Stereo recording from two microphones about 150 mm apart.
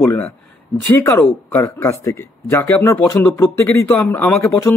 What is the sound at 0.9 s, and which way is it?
A man's voice, 15° left (ahead or behind).